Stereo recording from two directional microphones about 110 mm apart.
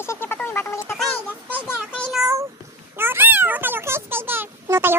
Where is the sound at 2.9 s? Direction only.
20° right (ahead or behind).